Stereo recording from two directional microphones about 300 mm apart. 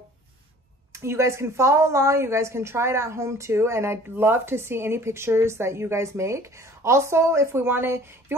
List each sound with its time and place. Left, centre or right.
0.9 s a woman's voice: centre